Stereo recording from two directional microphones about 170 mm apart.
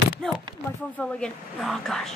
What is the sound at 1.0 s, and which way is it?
Speech, 5° left (ahead or behind).